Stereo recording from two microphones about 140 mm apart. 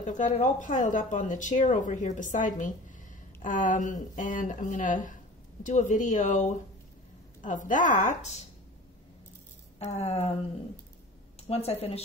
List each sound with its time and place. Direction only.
0.0 s speech: 60° left (ahead or behind)
5.6 s speech: 60° left (ahead or behind)
7.4 s speech: 70° left (ahead or behind)
9.8 s a woman's voice: 50° left (ahead or behind)
11.4 s a woman's voice: 45° left (ahead or behind)